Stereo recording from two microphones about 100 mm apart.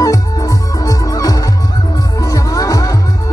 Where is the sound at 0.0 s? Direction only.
35° left (ahead or behind).